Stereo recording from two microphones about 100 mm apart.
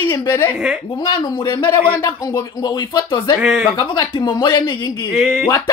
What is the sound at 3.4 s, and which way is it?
Speech, 5° right (ahead or behind).